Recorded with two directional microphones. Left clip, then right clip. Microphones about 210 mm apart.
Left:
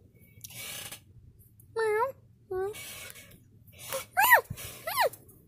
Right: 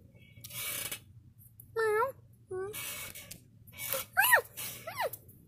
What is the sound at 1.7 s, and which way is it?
Cat, 10° left (ahead or behind).